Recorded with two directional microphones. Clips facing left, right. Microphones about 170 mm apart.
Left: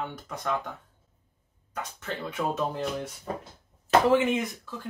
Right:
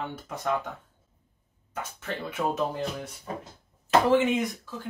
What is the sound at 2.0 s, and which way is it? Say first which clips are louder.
Speech: right 1 dB; 5° right (ahead or behind).